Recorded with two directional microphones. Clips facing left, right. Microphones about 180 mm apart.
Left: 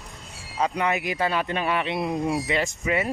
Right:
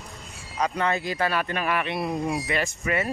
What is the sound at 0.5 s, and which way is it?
Speech, 20° left (ahead or behind).